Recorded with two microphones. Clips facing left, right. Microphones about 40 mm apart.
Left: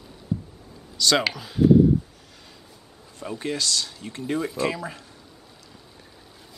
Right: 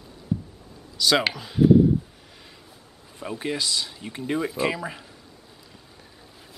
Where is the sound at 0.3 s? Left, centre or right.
Centre.